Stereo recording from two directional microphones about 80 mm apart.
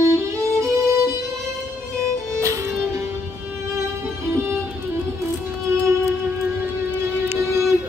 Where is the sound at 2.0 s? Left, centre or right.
Right.